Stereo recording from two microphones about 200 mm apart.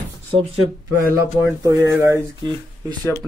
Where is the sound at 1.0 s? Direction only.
15° right (ahead or behind).